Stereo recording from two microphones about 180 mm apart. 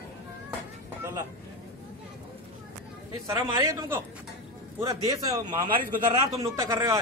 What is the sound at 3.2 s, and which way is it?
A man's voice, 20° right (ahead or behind).